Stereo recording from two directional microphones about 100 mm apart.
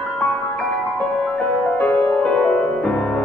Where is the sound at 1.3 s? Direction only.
10° left (ahead or behind).